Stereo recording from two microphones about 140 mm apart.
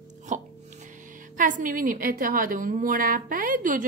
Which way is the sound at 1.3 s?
70° right (ahead or behind).